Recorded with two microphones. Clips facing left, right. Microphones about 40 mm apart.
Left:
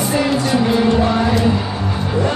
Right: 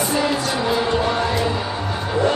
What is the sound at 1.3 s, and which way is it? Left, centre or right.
Music, centre.